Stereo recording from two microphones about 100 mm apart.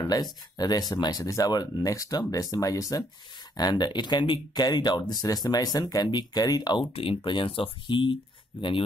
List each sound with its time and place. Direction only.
0.0 s speech: 40° left (ahead or behind)
6.9 s speech: 70° left (ahead or behind)
7.2 s speech: 55° left (ahead or behind)